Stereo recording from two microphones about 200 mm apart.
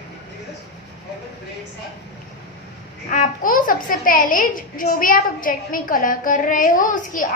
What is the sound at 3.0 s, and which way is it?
A child's voice, 40° left (ahead or behind).